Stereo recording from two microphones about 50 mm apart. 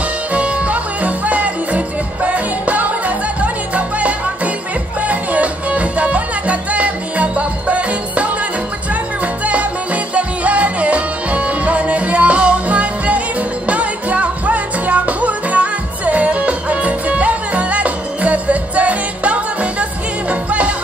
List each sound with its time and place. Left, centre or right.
0.3 s music: right